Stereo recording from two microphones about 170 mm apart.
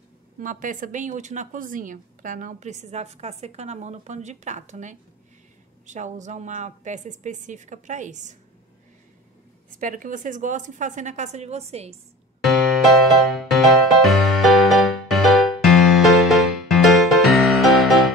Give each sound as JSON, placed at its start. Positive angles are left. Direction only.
{"t": 0.4, "sound": "speech", "side_deg": -50}
{"t": 9.8, "sound": "speech", "side_deg": -50}
{"t": 12.4, "sound": "music", "side_deg": 0}